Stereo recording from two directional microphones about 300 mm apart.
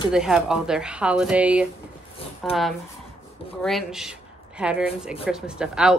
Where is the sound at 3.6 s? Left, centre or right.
Centre.